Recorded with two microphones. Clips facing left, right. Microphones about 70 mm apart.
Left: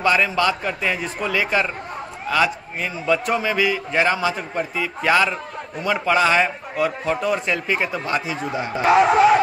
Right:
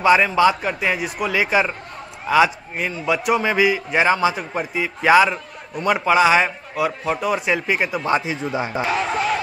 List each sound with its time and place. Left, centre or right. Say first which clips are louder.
0.0 s a man's voice: right 4 dB; centre
8.8 s speech: left 11 dB; left